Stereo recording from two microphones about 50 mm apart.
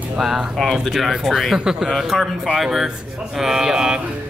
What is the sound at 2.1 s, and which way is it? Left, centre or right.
Speech, centre.